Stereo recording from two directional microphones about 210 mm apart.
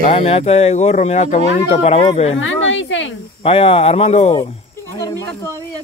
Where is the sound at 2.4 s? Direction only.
60° left (ahead or behind).